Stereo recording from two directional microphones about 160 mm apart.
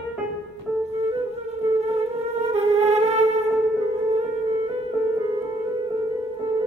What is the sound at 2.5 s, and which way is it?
Music, 45° right (ahead or behind).